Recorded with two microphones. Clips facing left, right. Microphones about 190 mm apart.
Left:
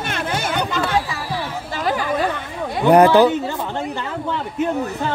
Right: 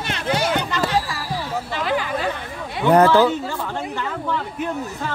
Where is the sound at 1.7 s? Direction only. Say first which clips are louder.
Left 2 dB; 45° left (ahead or behind).